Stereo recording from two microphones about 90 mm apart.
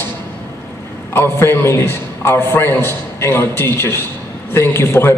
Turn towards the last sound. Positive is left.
turn(degrees=25)  # may be behind; listen again after turning